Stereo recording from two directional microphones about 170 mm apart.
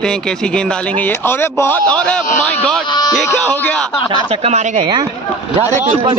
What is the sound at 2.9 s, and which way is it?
Speech, 25° left (ahead or behind).